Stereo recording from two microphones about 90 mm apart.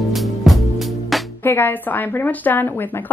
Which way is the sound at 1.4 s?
25° left (ahead or behind).